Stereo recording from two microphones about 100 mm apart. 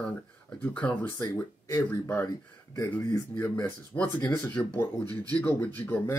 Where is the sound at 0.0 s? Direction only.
15° left (ahead or behind).